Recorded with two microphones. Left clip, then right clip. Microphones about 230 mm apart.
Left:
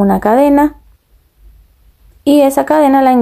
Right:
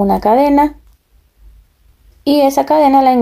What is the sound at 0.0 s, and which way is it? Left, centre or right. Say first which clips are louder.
Speech: left 1 dB; centre.